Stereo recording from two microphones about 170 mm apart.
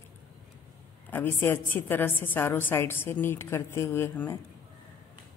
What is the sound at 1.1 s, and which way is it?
A woman's voice, 15° left (ahead or behind).